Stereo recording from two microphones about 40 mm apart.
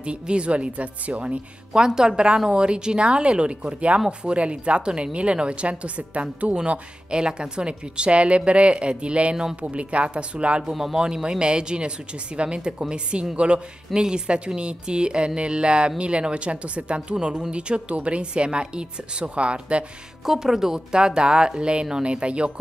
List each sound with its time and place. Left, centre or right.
0.0 s speech: right
1.7 s a woman's voice: centre
10.6 s speech: centre
11.2 s a woman's voice: right
20.2 s a woman's voice: centre; by 22.5 s right